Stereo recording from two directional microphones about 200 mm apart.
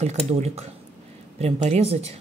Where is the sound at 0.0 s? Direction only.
35° right (ahead or behind).